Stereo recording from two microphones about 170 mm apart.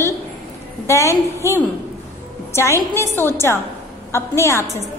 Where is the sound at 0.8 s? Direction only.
15° left (ahead or behind).